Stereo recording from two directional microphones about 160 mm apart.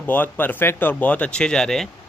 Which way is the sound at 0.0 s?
10° left (ahead or behind).